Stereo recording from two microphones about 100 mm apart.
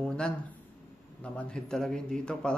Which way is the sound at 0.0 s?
10° left (ahead or behind).